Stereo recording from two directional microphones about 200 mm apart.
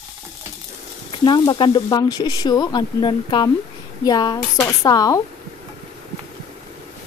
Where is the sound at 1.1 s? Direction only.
25° left (ahead or behind).